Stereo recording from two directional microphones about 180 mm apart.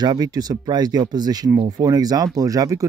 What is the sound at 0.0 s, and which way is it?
Speech, 20° right (ahead or behind).